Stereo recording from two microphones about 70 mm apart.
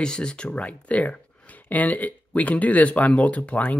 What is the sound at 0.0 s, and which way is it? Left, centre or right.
Speech, centre.